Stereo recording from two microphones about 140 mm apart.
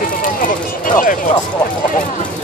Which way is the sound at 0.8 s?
70° left (ahead or behind).